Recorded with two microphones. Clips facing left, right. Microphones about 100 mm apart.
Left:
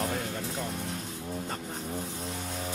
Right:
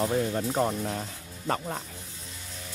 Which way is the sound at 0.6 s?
65° right (ahead or behind).